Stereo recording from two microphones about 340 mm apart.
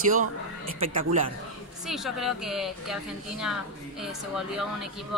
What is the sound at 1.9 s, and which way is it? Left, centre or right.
A woman's voice, centre.